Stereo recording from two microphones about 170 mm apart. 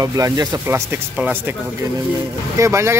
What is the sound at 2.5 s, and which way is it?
Speech, 15° right (ahead or behind).